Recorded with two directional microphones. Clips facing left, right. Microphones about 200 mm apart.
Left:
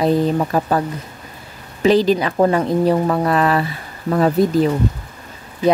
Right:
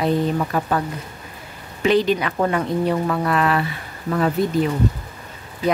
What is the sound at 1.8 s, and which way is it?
A woman's voice, 35° left (ahead or behind).